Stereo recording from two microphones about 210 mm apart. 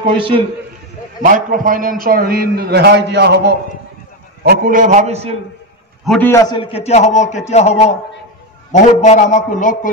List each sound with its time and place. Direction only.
0.0 s a man's voice: 25° right (ahead or behind)
1.2 s a man's voice: 40° right (ahead or behind)
4.5 s a man's voice: 40° right (ahead or behind)
6.0 s a man's voice: 5° left (ahead or behind); by 9.8 s 35° left (ahead or behind)